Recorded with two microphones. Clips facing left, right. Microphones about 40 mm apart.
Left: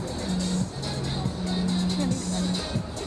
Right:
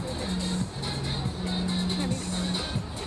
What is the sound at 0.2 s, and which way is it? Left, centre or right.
Music, right.